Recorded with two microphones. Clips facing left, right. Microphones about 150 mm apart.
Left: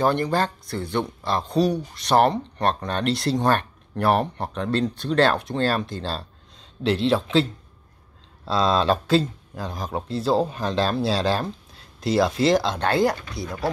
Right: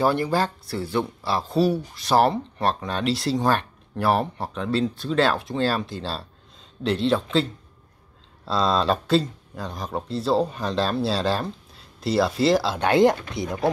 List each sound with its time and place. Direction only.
0.0 s speech: 10° right (ahead or behind)
12.9 s speech: 20° right (ahead or behind)